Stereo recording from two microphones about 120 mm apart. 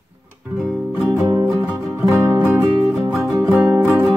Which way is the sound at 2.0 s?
20° right (ahead or behind).